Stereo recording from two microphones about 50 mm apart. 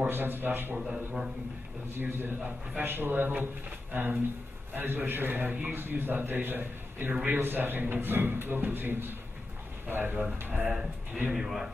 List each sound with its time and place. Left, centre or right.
0.1 s a man's voice: right
0.7 s speech: centre
2.0 s a man's voice: right
11.3 s speech: centre